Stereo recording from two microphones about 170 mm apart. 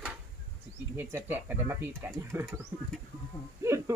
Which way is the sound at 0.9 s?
10° right (ahead or behind).